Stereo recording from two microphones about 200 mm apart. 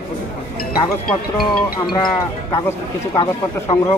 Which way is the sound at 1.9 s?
20° left (ahead or behind).